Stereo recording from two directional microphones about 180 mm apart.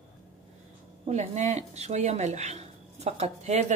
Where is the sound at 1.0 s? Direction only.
40° right (ahead or behind).